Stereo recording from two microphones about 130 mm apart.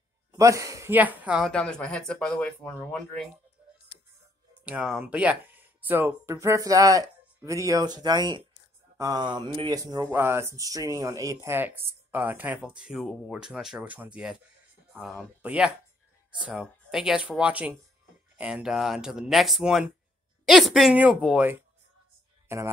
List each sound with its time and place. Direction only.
0.3 s a man's voice: 25° right (ahead or behind)
0.9 s speech: 10° right (ahead or behind)
1.5 s speech: 5° left (ahead or behind)
4.6 s speech: 5° right (ahead or behind); by 9.7 s 40° right (ahead or behind)
9.7 s speech: 30° right (ahead or behind)
10.1 s speech: 20° right (ahead or behind)
16.9 s a woman's voice: 5° right (ahead or behind)
22.5 s speech: 20° right (ahead or behind)